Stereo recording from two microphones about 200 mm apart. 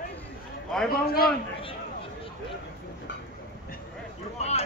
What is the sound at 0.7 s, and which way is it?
Speech, 5° left (ahead or behind).